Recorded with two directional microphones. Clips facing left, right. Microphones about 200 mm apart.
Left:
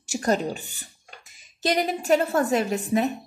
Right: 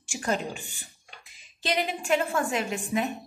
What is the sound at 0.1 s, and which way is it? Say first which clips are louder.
A woman's voice: left 6 dB; 40° left (ahead or behind).